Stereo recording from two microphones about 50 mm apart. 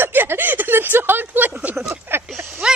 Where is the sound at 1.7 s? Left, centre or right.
Right.